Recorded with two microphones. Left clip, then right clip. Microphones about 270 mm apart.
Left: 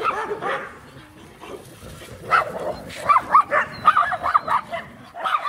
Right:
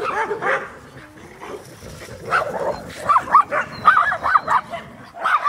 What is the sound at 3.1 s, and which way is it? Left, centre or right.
Dog, centre.